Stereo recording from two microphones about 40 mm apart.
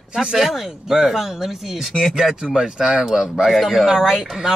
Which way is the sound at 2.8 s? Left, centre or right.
Centre.